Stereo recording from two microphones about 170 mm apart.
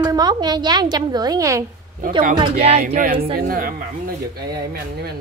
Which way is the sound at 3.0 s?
60° right (ahead or behind).